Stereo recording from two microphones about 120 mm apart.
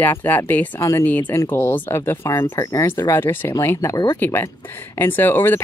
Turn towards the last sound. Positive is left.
turn(degrees=15)  # may be behind; listen again after turning